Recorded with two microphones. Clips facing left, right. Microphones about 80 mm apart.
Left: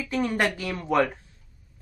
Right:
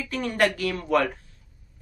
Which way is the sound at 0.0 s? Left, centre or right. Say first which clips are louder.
Right 1 dB; centre.